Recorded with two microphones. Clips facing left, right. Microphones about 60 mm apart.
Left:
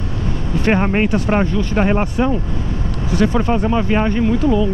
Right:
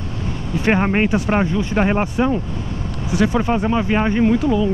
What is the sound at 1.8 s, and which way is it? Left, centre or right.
Speech, centre.